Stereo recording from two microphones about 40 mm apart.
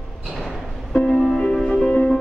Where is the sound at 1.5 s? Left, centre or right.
Left.